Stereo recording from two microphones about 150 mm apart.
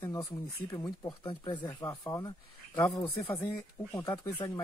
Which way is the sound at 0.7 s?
20° left (ahead or behind).